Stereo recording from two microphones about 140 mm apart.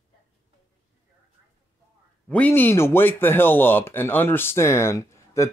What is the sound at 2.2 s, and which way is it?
Speech, 10° left (ahead or behind).